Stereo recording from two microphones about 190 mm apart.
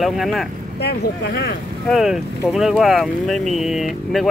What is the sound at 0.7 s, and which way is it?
Speech, 60° left (ahead or behind).